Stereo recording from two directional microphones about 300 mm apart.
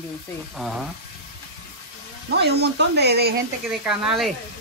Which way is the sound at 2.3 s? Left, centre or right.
Right.